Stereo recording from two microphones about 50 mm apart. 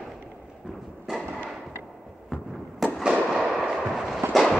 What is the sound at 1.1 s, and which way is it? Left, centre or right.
Fireworks, centre.